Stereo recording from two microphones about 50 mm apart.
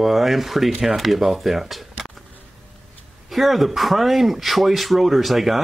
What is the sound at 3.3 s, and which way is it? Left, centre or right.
Speech, centre.